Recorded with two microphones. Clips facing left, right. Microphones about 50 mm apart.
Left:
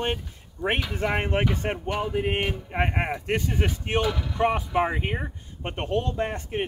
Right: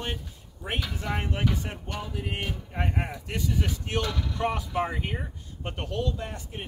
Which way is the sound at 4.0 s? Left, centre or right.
Centre.